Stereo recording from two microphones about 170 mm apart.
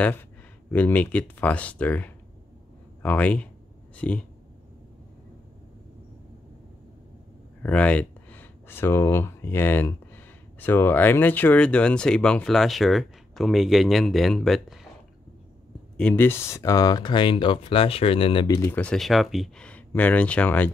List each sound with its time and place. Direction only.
0.7 s speech: 10° left (ahead or behind)
7.6 s speech: 10° left (ahead or behind)
16.0 s speech: 10° left (ahead or behind); by 18.6 s 30° left (ahead or behind)
18.6 s speech: 10° left (ahead or behind)